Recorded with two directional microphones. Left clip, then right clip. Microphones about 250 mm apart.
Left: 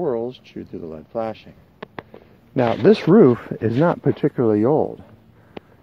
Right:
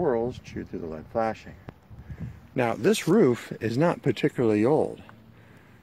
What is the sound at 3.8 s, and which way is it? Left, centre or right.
Speech, centre.